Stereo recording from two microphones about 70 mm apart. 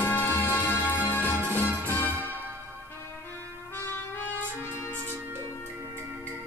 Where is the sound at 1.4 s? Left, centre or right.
Right.